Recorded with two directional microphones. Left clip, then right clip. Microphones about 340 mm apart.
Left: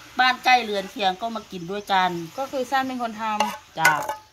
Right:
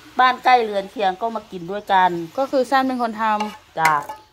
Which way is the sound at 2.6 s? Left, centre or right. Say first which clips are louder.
Right 5 dB; centre.